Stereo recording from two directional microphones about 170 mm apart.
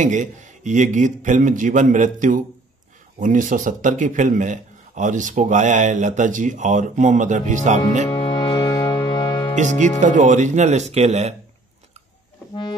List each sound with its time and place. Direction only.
0.0 s speech: 45° right (ahead or behind)
8.1 s music: 30° left (ahead or behind)
9.6 s speech: 45° right (ahead or behind)